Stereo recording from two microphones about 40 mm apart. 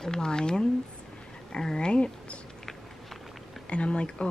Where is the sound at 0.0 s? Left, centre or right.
Centre.